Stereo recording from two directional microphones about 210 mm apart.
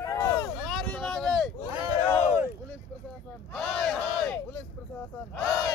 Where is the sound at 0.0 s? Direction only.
15° left (ahead or behind).